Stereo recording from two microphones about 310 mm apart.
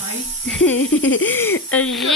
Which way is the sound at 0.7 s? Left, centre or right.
Left.